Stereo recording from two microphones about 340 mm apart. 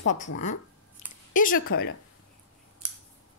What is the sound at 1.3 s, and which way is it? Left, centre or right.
Speech, left.